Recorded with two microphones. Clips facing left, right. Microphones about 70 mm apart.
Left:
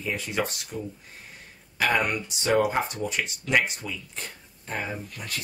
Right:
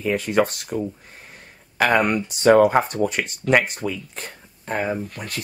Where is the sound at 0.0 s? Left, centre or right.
Right.